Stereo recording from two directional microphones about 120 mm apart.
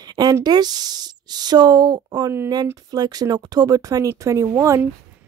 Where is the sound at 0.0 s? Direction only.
35° right (ahead or behind).